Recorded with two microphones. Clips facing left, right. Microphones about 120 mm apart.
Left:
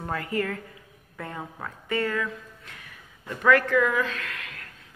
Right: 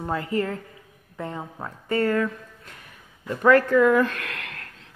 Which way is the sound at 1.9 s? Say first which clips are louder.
Right 5 dB; 40° right (ahead or behind).